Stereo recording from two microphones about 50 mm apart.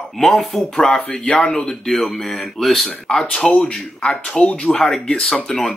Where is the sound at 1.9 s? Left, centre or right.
Centre.